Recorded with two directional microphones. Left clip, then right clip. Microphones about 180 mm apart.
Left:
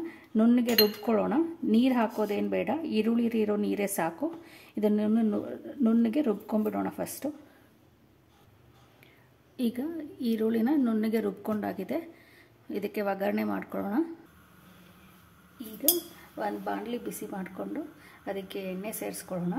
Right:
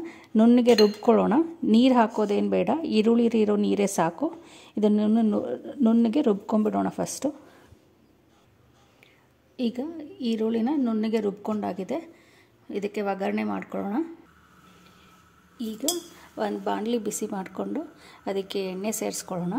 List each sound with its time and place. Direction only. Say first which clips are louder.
0.0 s cutlery: right 5 dB; 40° right (ahead or behind)
1.0 s speech: right 6 dB; 40° right (ahead or behind)
9.6 s a woman's voice: right 2 dB; 20° right (ahead or behind)
16.3 s a woman's voice: right 5 dB; 45° right (ahead or behind)